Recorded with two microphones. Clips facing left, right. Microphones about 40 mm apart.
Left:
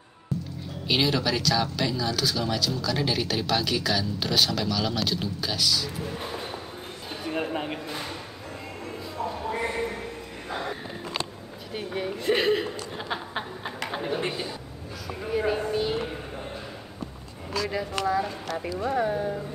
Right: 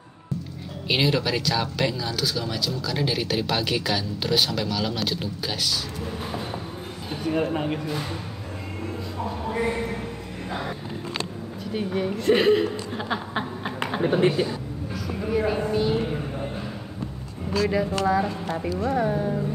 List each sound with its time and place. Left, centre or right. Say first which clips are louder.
0.8 s speech: right 1 dB; centre
2.1 s speech: even; centre
3.4 s a woman's voice: right 1 dB; right; by 7.8 s centre
9.2 s a woman's voice: right 2 dB; centre
12.9 s a sound: right 4 dB; centre
14.0 s speech: right 9 dB; centre
14.3 s speech: right 8 dB; centre
16.0 s a sound: right 5 dB; centre
17.5 s speech: right 6 dB; centre
18.6 s a woman's voice: right 2 dB; centre